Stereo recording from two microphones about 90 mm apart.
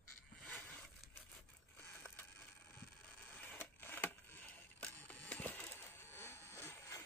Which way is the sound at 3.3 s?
20° left (ahead or behind).